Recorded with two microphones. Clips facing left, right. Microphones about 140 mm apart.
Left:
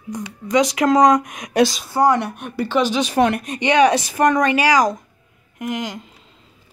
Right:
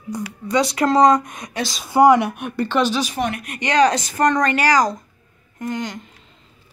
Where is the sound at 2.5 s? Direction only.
10° left (ahead or behind).